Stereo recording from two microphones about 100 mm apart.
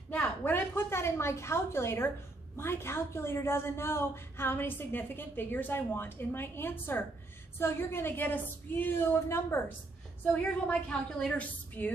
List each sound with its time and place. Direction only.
0.1 s a woman's voice: 15° left (ahead or behind)
10.3 s a woman's voice: 10° left (ahead or behind)